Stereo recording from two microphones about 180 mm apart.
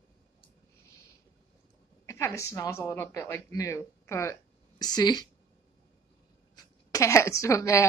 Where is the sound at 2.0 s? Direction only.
15° left (ahead or behind).